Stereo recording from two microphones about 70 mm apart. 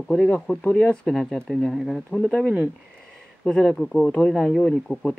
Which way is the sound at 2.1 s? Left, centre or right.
Centre.